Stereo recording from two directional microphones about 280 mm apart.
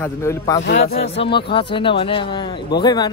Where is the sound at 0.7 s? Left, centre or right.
Left.